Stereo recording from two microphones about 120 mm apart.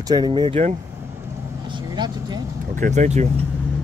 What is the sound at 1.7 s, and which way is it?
Vehicle, 40° right (ahead or behind).